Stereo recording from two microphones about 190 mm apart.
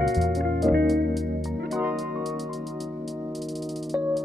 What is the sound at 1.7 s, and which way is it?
Music, 5° right (ahead or behind).